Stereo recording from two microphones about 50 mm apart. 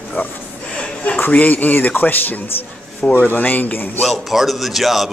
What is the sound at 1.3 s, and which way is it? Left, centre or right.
A man's voice, left.